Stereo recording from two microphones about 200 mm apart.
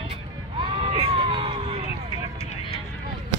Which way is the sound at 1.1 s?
25° right (ahead or behind).